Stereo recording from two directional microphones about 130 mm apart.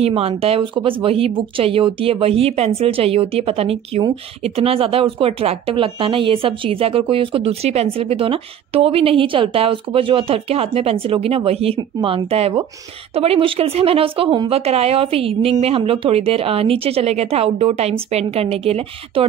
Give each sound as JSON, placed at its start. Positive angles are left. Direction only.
{"t": 0.0, "sound": "speech", "side_deg": -50}